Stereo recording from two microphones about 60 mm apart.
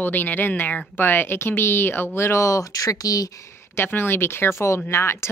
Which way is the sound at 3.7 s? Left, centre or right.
Left.